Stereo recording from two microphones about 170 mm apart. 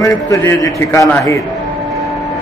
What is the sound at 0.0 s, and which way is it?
A man's voice, 20° left (ahead or behind).